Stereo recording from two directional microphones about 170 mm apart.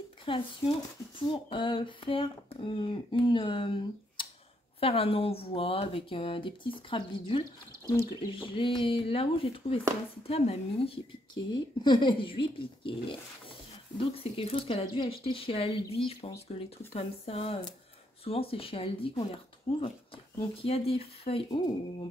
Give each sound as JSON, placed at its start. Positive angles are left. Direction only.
{"t": 0.2, "sound": "speech", "side_deg": 30}
{"t": 11.3, "sound": "speech", "side_deg": 25}